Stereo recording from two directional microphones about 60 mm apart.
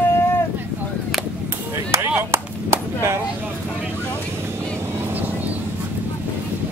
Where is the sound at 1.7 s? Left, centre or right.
Right.